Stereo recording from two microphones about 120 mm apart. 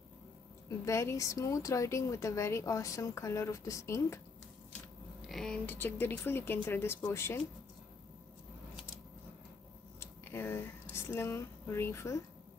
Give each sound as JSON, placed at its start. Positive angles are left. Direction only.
{"t": 0.8, "sound": "speech", "side_deg": 25}
{"t": 5.2, "sound": "speech", "side_deg": 5}
{"t": 5.7, "sound": "speech", "side_deg": 15}
{"t": 9.9, "sound": "a sound", "side_deg": 20}